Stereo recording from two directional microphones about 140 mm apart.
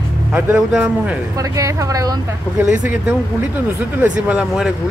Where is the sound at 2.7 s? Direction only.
15° right (ahead or behind).